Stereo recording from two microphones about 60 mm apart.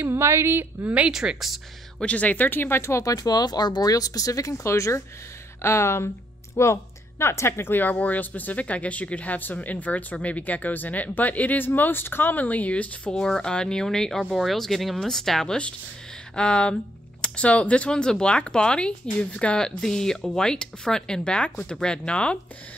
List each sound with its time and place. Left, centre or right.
0.0 s a woman's voice: right
0.8 s speech: right
1.1 s speech: centre
2.0 s speech: left
3.0 s speech: left
13.1 s speech: centre